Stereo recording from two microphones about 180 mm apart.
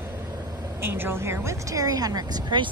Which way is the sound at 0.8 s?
10° right (ahead or behind).